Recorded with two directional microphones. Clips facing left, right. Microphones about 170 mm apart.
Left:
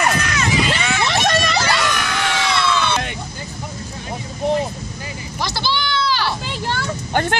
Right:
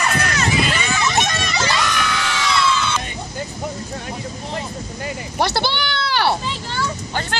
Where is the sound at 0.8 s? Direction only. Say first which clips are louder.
Left 1 dB; 65° left (ahead or behind).